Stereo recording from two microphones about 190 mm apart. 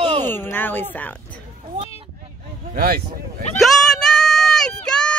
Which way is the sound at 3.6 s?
Centre (ahead or behind).